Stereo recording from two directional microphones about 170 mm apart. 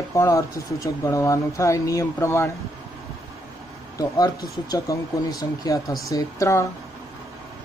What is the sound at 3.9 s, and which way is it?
Speech, 20° left (ahead or behind).